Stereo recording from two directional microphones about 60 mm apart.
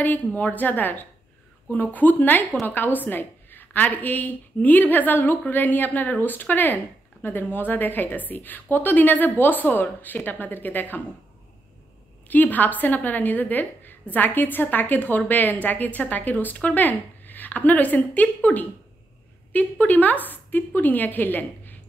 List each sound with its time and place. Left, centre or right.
0.0 s a woman's voice: left
12.3 s a woman's voice: left